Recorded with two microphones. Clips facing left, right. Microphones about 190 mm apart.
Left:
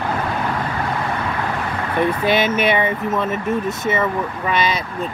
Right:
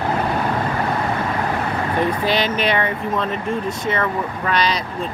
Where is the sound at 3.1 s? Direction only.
5° left (ahead or behind).